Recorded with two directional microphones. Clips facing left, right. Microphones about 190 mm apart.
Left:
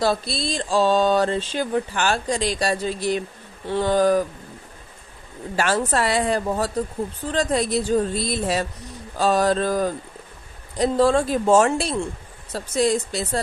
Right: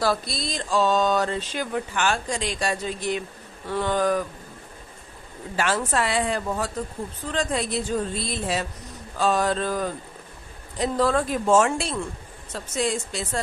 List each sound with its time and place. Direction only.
0.0 s mantra: 25° left (ahead or behind)
5.6 s mantra: 40° left (ahead or behind)